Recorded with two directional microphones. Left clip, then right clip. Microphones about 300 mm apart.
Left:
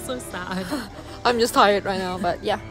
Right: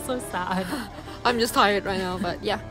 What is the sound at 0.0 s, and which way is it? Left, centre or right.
Speech, centre.